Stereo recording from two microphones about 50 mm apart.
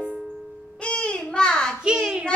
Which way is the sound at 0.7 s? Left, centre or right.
Left.